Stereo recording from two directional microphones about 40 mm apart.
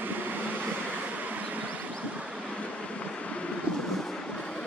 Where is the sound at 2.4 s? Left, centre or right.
Left.